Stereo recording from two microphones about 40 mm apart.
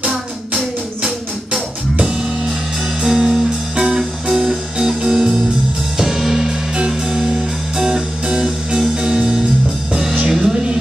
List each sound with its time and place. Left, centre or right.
3.0 s music: centre